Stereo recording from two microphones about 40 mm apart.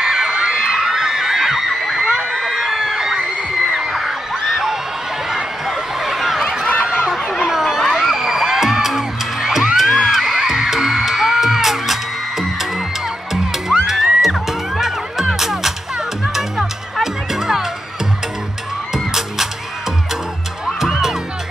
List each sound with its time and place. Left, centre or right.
0.0 s crowd: centre
0.6 s children shouting: centre
2.4 s crowd: centre
3.8 s a sound: centre
6.8 s crowd: centre
7.8 s music: centre
18.9 s music: centre